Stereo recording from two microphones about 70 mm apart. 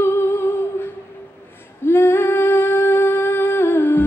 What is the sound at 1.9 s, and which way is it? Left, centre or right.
Female singing, left.